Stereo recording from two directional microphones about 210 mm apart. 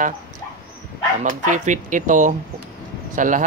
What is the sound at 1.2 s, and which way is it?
Speech, 40° right (ahead or behind).